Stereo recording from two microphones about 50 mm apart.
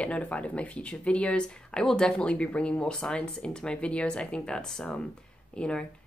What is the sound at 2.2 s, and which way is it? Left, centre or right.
Speech, left.